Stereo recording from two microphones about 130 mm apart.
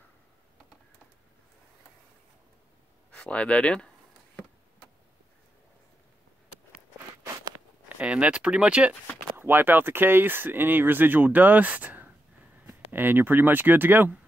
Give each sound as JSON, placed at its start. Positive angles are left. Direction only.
{"t": 3.1, "sound": "speech", "side_deg": 10}
{"t": 8.0, "sound": "speech", "side_deg": -10}